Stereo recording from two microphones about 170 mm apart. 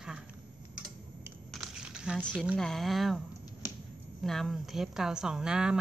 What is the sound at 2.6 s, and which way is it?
A woman's voice, centre (ahead or behind).